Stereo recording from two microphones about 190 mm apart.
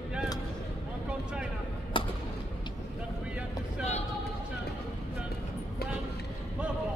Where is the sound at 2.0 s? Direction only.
25° left (ahead or behind).